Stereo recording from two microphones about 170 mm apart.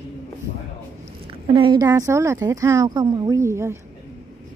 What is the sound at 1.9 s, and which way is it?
Speech, 15° right (ahead or behind).